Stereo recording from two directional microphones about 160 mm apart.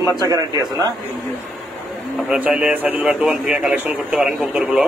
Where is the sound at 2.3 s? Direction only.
10° right (ahead or behind).